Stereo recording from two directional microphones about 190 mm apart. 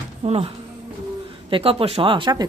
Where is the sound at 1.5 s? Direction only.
30° right (ahead or behind).